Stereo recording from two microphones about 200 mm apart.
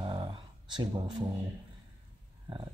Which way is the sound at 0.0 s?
25° right (ahead or behind).